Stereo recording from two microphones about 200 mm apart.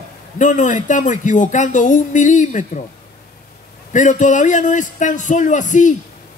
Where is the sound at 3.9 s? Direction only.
40° left (ahead or behind).